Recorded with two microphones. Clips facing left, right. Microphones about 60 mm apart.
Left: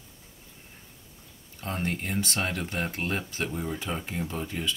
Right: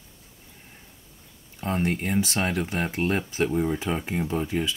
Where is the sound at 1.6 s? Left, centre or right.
Centre.